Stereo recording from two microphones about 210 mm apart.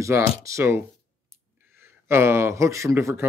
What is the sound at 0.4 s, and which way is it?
Speech, 15° right (ahead or behind).